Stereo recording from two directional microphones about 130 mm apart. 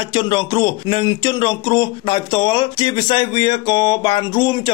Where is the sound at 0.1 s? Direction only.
35° left (ahead or behind).